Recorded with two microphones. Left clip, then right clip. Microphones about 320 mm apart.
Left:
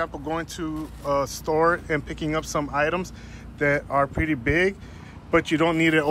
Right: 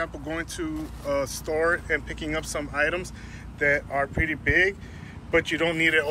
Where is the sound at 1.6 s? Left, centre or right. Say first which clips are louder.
Left 2 dB; left.